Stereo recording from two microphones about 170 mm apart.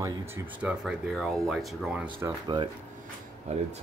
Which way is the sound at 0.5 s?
5° right (ahead or behind).